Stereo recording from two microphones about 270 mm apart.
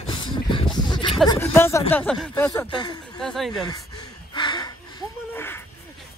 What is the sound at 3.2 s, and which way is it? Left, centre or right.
Speech, centre.